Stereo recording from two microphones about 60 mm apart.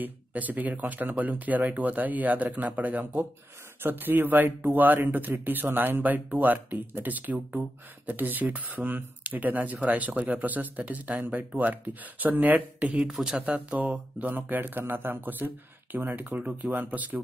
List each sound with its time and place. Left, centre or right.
0.0 s speech: right